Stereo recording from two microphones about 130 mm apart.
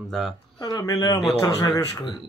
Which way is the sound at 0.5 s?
30° left (ahead or behind).